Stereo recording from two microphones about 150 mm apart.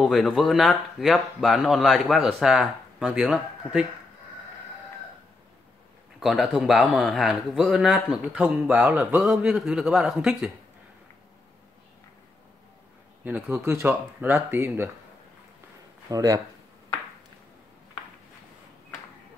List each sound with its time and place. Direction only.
0.0 s a man's voice: centre (ahead or behind)
6.1 s a man's voice: centre (ahead or behind)
13.2 s speech: 10° right (ahead or behind)
16.1 s speech: 25° right (ahead or behind)